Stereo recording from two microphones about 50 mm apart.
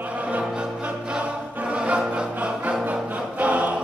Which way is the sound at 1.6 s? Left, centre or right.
Right.